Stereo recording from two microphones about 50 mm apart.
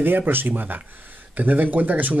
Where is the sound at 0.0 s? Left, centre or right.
Right.